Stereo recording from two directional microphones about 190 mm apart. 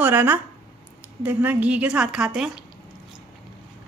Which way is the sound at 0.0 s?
10° right (ahead or behind).